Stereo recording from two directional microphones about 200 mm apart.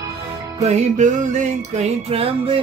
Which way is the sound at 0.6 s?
35° right (ahead or behind).